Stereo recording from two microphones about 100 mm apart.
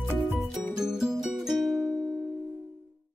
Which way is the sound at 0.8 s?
5° right (ahead or behind).